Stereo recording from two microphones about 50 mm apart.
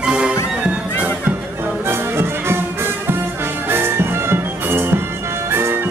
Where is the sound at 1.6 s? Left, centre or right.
Right.